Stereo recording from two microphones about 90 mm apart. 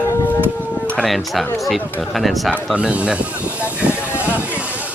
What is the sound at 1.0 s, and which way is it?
Speech, centre (ahead or behind).